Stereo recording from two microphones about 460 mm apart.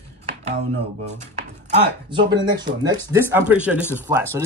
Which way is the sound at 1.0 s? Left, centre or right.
Centre.